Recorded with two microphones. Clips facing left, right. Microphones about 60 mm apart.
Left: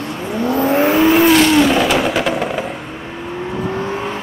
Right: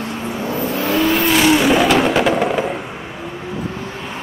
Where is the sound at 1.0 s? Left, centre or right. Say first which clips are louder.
Left 6 dB; centre.